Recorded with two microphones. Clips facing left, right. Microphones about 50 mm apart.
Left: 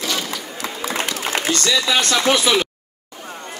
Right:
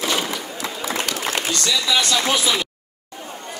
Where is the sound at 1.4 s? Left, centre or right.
Left.